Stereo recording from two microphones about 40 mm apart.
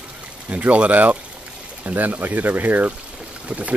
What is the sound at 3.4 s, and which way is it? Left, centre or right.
Speech, right.